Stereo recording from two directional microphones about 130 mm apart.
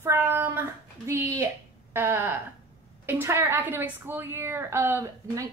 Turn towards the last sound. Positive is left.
turn(degrees=-25)  # may be behind; listen again after turning